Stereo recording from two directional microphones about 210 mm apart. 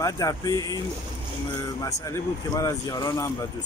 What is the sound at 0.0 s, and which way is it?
Speech, 15° left (ahead or behind).